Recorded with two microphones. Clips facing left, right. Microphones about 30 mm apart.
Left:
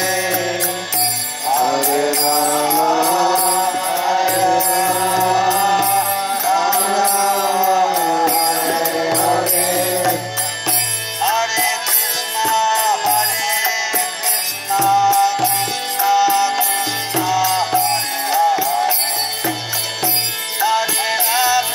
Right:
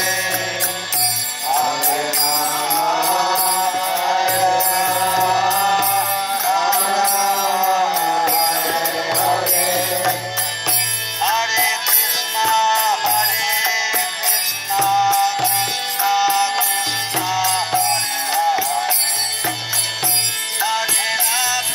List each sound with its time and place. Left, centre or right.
0.0 s mantra: right
1.5 s music: centre
1.9 s mantra: centre
2.2 s mantra: right
3.3 s music: centre
4.1 s music: right
8.9 s mantra: centre
11.2 s music: right
14.7 s music: right
18.4 s music: centre
20.6 s music: centre